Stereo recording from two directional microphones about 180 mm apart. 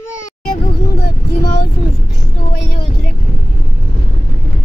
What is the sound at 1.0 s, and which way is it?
Speech, 60° left (ahead or behind).